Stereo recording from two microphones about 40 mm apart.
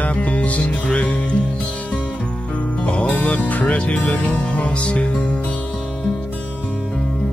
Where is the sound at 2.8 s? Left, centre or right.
Left.